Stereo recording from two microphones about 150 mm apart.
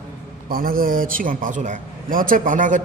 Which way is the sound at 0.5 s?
75° right (ahead or behind).